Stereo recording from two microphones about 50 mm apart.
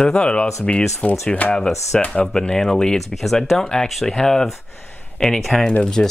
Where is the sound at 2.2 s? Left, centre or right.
Centre.